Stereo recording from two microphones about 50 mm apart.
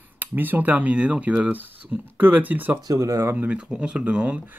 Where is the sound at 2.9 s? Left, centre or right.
Right.